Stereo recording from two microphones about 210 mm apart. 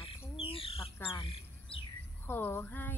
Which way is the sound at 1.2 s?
25° left (ahead or behind).